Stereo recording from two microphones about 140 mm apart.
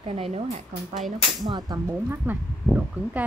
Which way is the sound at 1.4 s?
25° right (ahead or behind).